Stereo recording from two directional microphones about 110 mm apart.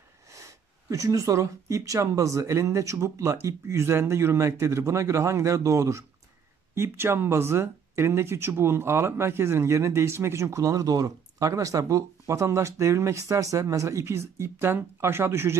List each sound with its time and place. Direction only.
0.3 s speech: 30° right (ahead or behind)